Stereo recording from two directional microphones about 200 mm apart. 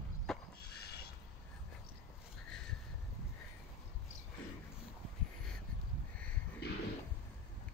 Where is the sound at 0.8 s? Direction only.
55° left (ahead or behind).